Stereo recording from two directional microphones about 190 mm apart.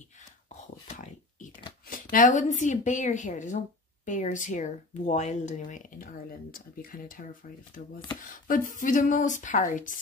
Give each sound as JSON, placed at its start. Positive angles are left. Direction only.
{"t": 0.8, "sound": "a sound", "side_deg": 40}
{"t": 1.9, "sound": "speech", "side_deg": 45}
{"t": 8.5, "sound": "speech", "side_deg": 45}